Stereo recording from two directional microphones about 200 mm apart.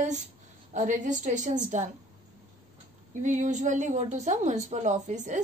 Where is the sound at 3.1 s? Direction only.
40° right (ahead or behind).